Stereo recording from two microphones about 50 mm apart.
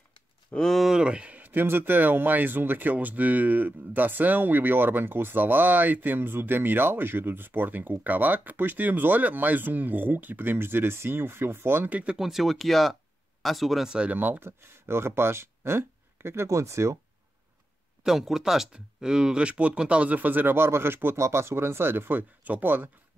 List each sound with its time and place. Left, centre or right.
0.7 s a sound: centre
0.9 s a sound: right
1.4 s speech: right
11.9 s speech: right
12.2 s speech: centre
14.1 s speech: right
18.0 s speech: centre; by 20.5 s right
20.5 s speech: right
21.2 s speech: right
22.4 s speech: right